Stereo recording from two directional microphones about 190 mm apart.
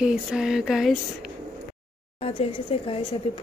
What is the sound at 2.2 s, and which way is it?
Speech, 30° left (ahead or behind).